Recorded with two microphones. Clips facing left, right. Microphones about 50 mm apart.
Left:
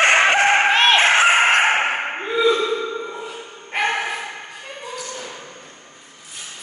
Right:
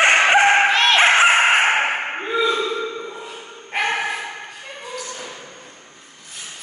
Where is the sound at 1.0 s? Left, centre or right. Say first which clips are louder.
Right 1 dB; centre.